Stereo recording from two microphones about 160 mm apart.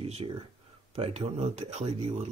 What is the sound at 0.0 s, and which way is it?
Speech, 35° right (ahead or behind).